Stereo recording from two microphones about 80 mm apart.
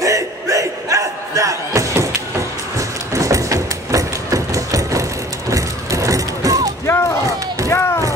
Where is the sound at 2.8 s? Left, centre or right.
Right.